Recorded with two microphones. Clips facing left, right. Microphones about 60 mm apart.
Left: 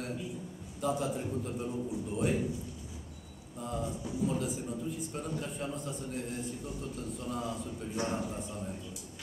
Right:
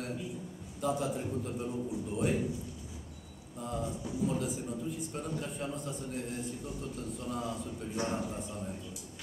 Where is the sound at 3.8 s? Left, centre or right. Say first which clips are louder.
Even; centre.